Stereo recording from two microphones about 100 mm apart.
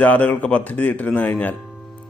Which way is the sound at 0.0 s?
15° left (ahead or behind).